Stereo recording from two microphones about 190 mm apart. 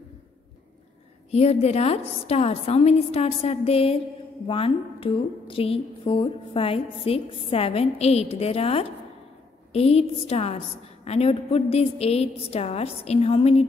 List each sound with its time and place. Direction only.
1.3 s a woman's voice: 35° left (ahead or behind)